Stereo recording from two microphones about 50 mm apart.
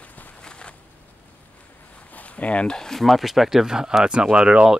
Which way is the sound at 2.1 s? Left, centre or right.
Left.